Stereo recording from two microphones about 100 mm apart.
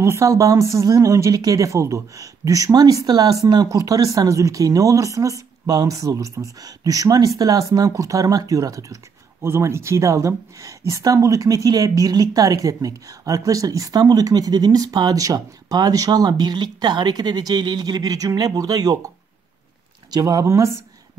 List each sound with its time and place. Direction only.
0.0 s speech: 30° right (ahead or behind)